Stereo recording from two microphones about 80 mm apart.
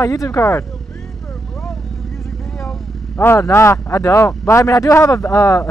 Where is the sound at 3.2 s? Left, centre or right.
Left.